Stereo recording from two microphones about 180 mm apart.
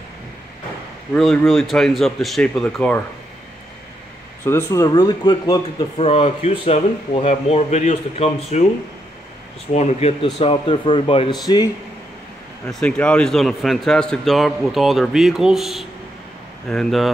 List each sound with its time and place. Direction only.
1.1 s a man's voice: 5° left (ahead or behind)
4.5 s speech: 15° left (ahead or behind); by 8.6 s 35° left (ahead or behind)
9.7 s speech: 40° left (ahead or behind); by 11.7 s 20° left (ahead or behind)
12.8 s a man's voice: 5° left (ahead or behind)